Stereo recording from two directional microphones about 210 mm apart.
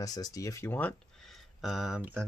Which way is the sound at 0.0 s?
15° left (ahead or behind).